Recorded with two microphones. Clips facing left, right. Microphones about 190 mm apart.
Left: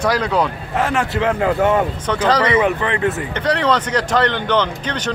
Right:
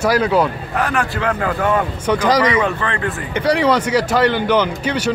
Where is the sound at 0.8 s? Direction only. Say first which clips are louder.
Left 2 dB; 25° left (ahead or behind).